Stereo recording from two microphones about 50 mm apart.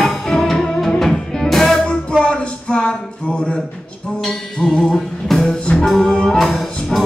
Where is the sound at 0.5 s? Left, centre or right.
Centre.